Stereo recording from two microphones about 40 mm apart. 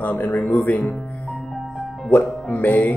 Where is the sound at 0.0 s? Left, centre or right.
Left.